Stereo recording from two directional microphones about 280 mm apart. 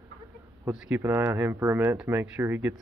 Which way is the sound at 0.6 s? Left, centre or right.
Centre.